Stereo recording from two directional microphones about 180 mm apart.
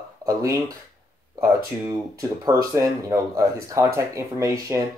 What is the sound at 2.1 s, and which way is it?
Speech, 20° right (ahead or behind).